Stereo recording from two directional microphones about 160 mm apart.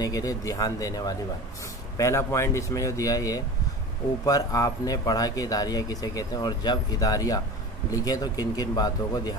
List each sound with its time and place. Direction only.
0.0 s speech: 20° left (ahead or behind)